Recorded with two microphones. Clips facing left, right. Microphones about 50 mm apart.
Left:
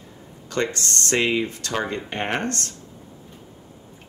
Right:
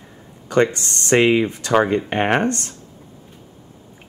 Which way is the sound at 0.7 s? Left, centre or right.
Right.